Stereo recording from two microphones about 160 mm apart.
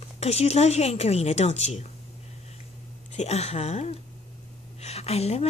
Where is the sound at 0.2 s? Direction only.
40° left (ahead or behind).